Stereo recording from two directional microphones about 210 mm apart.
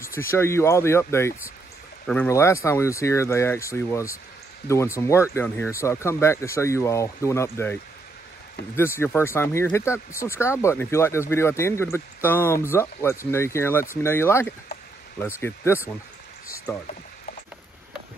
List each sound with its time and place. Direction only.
0.0 s speech: 10° left (ahead or behind)